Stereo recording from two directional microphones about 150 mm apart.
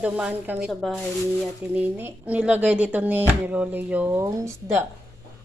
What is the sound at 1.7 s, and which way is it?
Speech, 10° right (ahead or behind).